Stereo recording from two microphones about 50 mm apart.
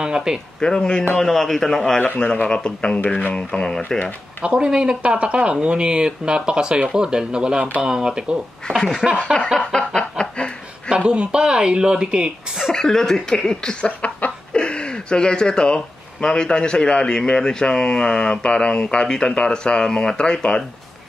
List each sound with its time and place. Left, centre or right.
0.0 s speech: centre
0.6 s speech: centre
1.1 s speech: centre
2.4 s speech: centre
4.4 s speech: centre
8.7 s speech: centre
9.7 s snicker: centre
10.9 s speech: centre
12.7 s speech: centre